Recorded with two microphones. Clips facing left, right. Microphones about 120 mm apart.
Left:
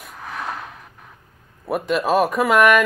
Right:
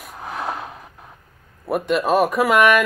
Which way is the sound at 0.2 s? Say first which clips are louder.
Right 3 dB; 25° right (ahead or behind).